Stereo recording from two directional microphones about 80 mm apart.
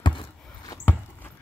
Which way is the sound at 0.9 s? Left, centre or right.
Left.